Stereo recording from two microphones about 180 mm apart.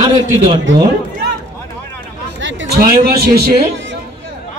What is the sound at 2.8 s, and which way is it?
Speech, 60° right (ahead or behind).